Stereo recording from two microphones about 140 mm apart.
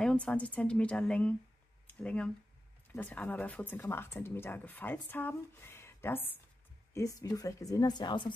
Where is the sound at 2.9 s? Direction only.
10° left (ahead or behind).